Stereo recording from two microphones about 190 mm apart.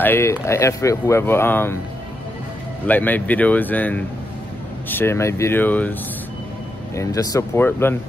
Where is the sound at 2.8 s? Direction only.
10° left (ahead or behind).